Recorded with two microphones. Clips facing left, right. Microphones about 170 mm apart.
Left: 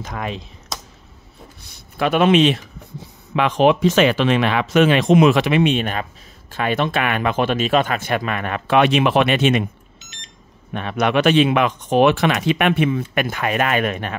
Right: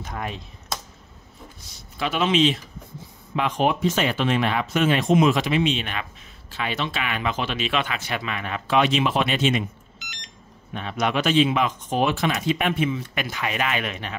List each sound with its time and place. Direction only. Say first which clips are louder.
0.0 s speech: left 4 dB; 90° left
1.6 s speech: left 7 dB; 60° left (ahead or behind)
3.3 s speech: left 7 dB; 85° left; by 9.7 s 65° left (ahead or behind)
10.7 s speech: left 5 dB; 60° left (ahead or behind)